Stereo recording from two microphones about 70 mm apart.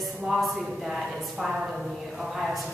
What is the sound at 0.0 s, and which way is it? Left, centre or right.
A woman's voice, centre.